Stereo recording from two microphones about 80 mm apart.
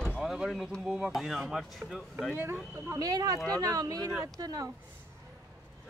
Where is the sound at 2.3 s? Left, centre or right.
Right.